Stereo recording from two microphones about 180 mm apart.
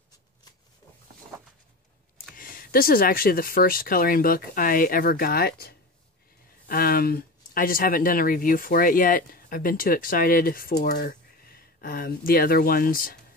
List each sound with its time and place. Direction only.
2.3 s speech: 50° left (ahead or behind)